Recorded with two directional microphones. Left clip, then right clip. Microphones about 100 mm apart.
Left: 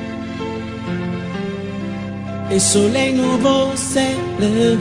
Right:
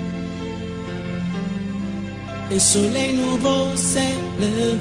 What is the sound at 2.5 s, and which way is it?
Music, 15° right (ahead or behind).